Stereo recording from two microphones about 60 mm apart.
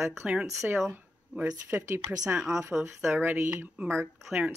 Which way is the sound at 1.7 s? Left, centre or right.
Right.